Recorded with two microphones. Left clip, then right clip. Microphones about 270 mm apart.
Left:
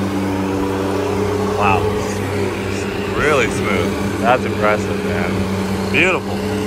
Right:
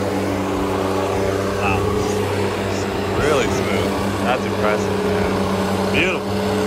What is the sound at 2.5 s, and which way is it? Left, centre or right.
Vehicle, right.